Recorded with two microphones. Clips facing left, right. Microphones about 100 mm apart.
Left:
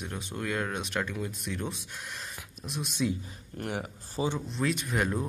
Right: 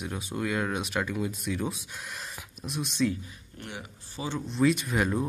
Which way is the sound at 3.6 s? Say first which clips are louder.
Left 7 dB; 45° left (ahead or behind).